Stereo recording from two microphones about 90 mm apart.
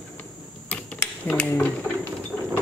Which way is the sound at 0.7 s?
15° left (ahead or behind).